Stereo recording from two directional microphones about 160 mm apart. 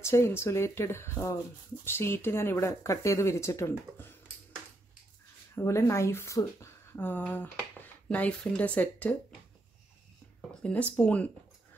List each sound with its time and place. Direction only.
0.0 s speech: 15° left (ahead or behind)
5.6 s speech: 15° left (ahead or behind)
10.6 s speech: 10° left (ahead or behind)